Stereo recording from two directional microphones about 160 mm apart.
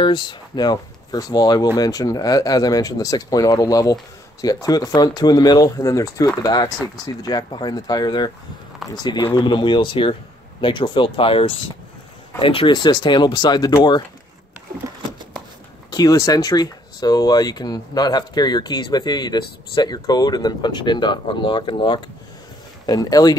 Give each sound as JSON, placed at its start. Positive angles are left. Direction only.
{"t": 0.0, "sound": "speech", "side_deg": 30}
{"t": 15.9, "sound": "speech", "side_deg": 25}